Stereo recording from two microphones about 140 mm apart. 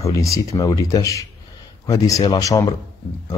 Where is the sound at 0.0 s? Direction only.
25° left (ahead or behind).